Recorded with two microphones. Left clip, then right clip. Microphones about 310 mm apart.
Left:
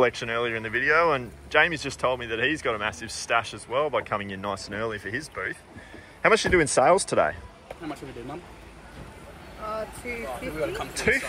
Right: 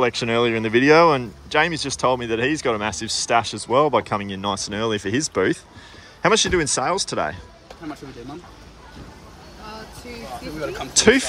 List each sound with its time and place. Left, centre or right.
0.0 s speech: centre
11.0 s speech: centre